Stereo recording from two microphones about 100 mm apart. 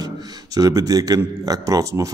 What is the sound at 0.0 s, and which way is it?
A man's voice, 40° right (ahead or behind).